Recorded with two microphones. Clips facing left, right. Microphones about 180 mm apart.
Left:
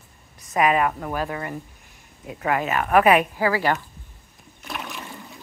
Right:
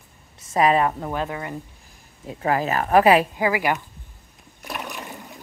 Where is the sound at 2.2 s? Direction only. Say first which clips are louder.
Right 1 dB; 30° right (ahead or behind).